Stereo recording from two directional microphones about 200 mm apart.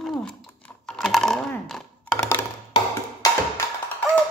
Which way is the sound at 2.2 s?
15° left (ahead or behind).